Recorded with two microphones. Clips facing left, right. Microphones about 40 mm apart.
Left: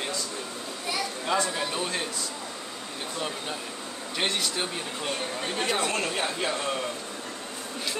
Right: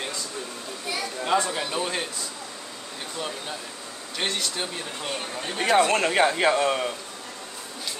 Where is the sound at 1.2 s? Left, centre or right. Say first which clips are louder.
Right 4 dB; centre.